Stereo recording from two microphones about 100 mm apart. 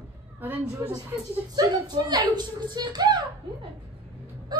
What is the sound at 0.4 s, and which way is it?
Speech, 20° right (ahead or behind).